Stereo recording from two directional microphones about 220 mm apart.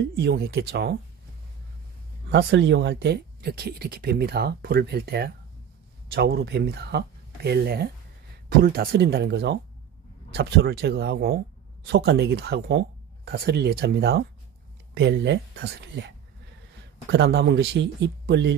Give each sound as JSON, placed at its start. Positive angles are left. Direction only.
{"t": 0.1, "sound": "speech", "side_deg": -50}
{"t": 2.3, "sound": "speech", "side_deg": -50}
{"t": 17.1, "sound": "speech", "side_deg": -50}